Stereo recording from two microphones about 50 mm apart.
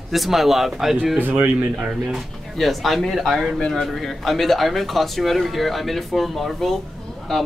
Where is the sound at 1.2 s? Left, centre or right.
Right.